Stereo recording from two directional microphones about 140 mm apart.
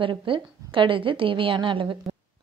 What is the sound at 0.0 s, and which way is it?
A woman's voice, 35° right (ahead or behind).